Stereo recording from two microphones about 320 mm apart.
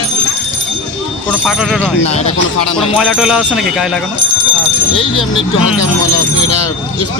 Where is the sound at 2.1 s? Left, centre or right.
Left.